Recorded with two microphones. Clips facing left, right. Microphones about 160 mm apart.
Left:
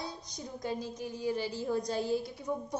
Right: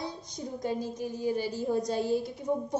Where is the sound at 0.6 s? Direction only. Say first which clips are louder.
Right 4 dB; 45° right (ahead or behind).